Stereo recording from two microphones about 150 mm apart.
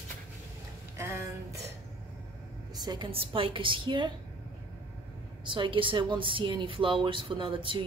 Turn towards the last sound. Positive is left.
turn(degrees=-35)  # may be behind; listen again after turning